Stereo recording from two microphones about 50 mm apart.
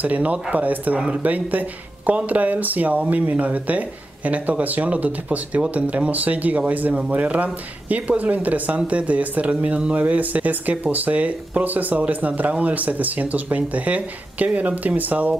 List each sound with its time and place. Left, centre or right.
0.0 s speech: right